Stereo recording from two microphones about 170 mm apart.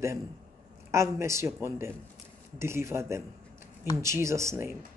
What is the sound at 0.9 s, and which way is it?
Speech, 15° right (ahead or behind).